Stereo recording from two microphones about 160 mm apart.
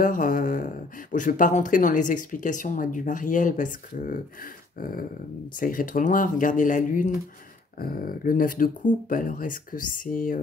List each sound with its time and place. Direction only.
0.0 s speech: 60° left (ahead or behind)
7.8 s speech: 65° left (ahead or behind)